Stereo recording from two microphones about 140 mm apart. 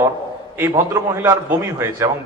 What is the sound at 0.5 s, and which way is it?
A man's voice, 20° right (ahead or behind).